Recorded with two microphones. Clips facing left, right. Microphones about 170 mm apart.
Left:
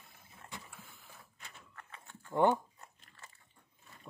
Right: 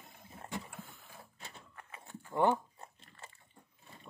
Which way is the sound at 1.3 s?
30° right (ahead or behind).